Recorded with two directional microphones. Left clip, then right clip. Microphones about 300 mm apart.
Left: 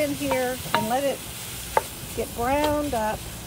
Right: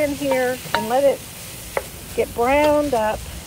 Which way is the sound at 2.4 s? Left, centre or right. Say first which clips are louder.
Right 7 dB; right.